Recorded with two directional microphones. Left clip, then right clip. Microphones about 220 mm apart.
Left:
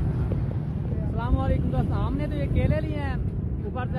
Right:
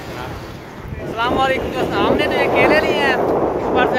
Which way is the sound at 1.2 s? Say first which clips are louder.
Right 15 dB; 5° right (ahead or behind).